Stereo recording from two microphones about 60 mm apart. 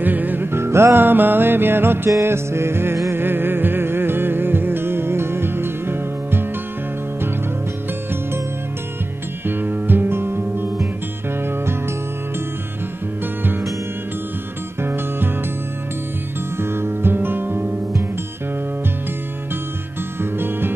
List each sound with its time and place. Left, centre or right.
0.0 s music: right
1.0 s music: right
9.5 s music: right
13.4 s music: right
14.8 s music: right
16.5 s music: right
20.2 s music: right